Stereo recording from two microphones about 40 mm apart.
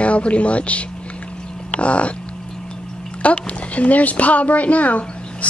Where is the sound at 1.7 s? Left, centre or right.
Left.